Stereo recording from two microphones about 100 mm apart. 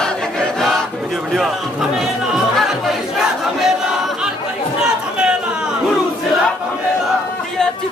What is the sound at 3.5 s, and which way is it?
Crowd, 5° right (ahead or behind).